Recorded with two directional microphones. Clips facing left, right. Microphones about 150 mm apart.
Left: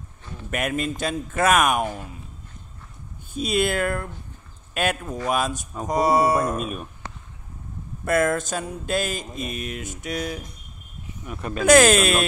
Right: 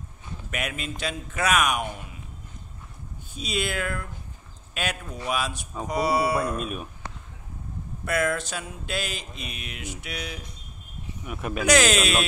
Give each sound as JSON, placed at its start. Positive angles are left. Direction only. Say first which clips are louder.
{"t": 0.5, "sound": "mantra", "louder": "left 7 dB", "side_deg": 50}
{"t": 3.3, "sound": "mantra", "louder": "left 7 dB", "side_deg": 50}
{"t": 6.6, "sound": "speech", "louder": "left 2 dB", "side_deg": 0}
{"t": 8.0, "sound": "mantra", "louder": "left 5 dB", "side_deg": 45}
{"t": 11.2, "sound": "speech", "louder": "left 1 dB", "side_deg": -5}
{"t": 11.6, "sound": "mantra", "louder": "left 6 dB", "side_deg": 50}